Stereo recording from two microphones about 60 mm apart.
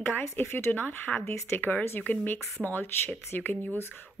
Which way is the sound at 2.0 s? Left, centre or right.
Left.